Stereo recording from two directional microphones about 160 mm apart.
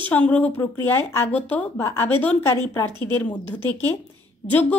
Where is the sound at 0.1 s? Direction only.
10° left (ahead or behind).